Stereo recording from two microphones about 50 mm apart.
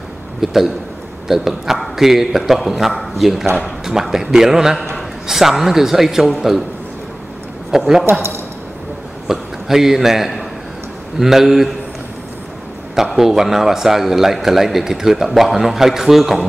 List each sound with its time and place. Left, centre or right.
0.4 s a man's voice: centre
7.7 s a man's voice: centre
8.1 s speech: right
9.3 s a man's voice: centre
12.9 s a man's voice: centre